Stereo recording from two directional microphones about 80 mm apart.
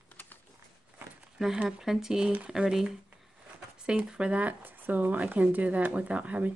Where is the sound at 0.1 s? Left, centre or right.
Left.